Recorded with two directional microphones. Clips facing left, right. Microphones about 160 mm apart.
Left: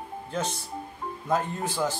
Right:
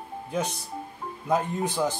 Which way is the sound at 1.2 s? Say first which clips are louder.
Right 2 dB; 15° right (ahead or behind).